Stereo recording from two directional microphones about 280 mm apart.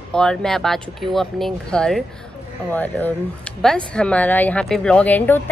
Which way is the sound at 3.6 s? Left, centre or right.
Centre.